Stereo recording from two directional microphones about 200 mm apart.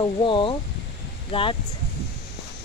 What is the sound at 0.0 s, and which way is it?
Speech, 25° left (ahead or behind).